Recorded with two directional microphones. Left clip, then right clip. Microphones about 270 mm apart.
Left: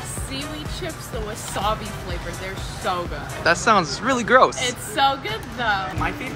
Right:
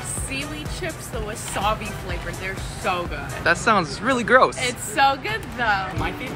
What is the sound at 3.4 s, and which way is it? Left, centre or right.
Speech, centre.